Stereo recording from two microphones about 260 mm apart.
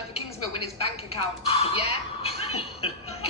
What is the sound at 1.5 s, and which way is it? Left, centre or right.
Music, left.